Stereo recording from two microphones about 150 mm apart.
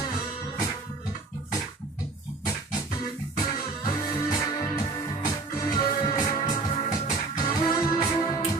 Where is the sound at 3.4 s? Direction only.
30° left (ahead or behind).